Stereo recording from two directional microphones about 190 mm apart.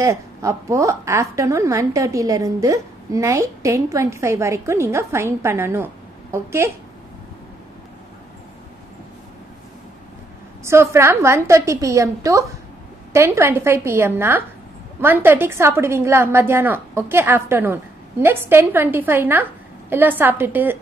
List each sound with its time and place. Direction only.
0.0 s a woman's voice: 15° right (ahead or behind)
10.6 s a woman's voice: 15° right (ahead or behind)